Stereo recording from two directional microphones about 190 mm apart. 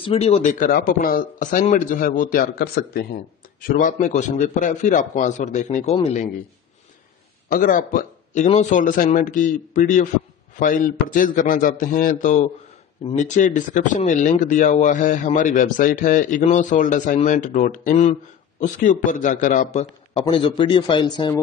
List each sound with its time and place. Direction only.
0.0 s a man's voice: 30° left (ahead or behind)
0.7 s a man's voice: 50° left (ahead or behind)
3.6 s a man's voice: 45° left (ahead or behind)
7.4 s a man's voice: 45° left (ahead or behind); by 21.4 s 20° left (ahead or behind)